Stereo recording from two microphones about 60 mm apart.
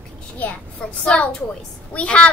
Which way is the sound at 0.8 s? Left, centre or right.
Centre.